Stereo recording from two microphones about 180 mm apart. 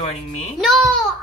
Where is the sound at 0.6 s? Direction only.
Centre (ahead or behind).